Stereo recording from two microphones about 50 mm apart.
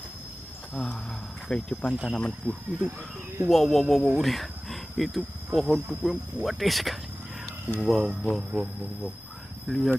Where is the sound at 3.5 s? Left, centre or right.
Centre.